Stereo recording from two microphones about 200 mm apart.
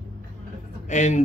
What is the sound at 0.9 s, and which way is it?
Speech, 35° left (ahead or behind).